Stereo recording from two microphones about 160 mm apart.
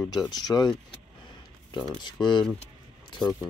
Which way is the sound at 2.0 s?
30° left (ahead or behind).